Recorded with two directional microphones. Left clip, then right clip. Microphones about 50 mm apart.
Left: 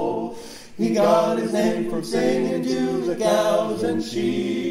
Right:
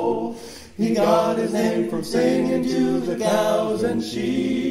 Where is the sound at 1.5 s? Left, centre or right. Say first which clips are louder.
Even; centre.